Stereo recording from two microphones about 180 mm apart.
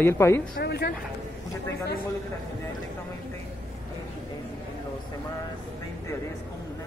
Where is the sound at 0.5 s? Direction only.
70° left (ahead or behind).